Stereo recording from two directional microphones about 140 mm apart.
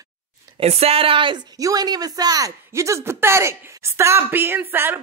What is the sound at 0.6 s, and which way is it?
Speech, 45° right (ahead or behind).